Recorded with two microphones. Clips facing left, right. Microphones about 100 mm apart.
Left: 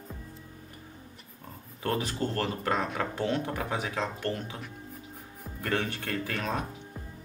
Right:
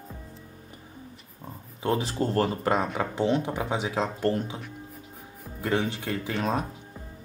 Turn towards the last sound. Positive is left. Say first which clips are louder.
# right 5 dB
turn(degrees=-25)  # may be behind; listen again after turning